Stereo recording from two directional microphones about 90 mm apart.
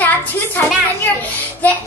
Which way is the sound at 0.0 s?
20° left (ahead or behind).